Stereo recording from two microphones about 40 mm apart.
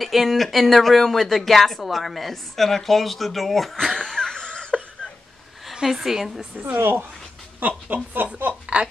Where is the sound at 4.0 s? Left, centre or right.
Centre.